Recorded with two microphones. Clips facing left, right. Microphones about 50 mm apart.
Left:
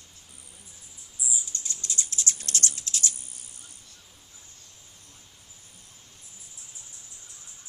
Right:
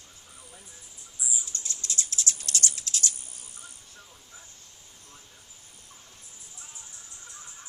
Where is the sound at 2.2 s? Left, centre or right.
Left.